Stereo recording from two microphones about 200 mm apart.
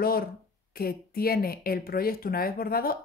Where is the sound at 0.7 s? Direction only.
50° left (ahead or behind).